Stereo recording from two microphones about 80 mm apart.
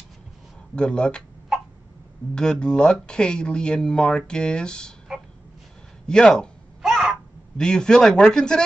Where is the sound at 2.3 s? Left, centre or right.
Centre.